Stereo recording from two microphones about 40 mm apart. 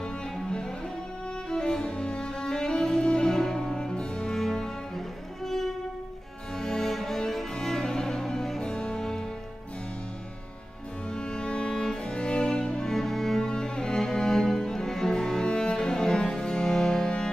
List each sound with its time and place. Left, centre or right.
0.0 s music: left
4.3 s music: centre
6.6 s cello: centre
8.6 s music: left
11.1 s music: left
12.9 s music: centre
13.4 s cello: left